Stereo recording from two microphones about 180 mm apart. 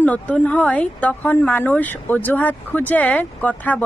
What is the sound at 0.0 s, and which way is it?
Speech, 10° left (ahead or behind).